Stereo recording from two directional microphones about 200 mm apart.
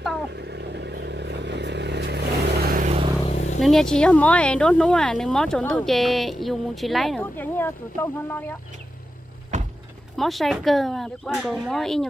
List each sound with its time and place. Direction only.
0.3 s vehicle: 55° right (ahead or behind)
2.8 s a sound: 30° right (ahead or behind)
3.3 s vehicle: 35° left (ahead or behind)
3.6 s speech: centre (ahead or behind)
10.1 s speech: centre (ahead or behind)